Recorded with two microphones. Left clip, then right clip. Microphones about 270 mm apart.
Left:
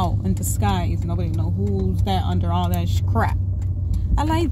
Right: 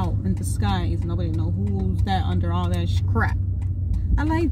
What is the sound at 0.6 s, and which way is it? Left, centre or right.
Speech, left.